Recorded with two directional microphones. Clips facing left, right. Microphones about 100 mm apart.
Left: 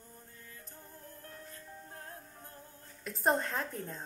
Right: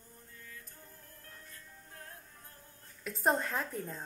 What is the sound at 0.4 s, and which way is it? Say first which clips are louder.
Music: right 1 dB; 30° left (ahead or behind).